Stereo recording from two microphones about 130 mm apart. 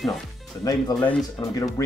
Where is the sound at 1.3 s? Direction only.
25° left (ahead or behind).